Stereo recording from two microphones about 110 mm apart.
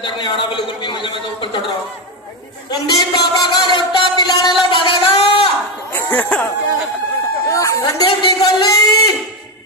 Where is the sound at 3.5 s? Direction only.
40° left (ahead or behind).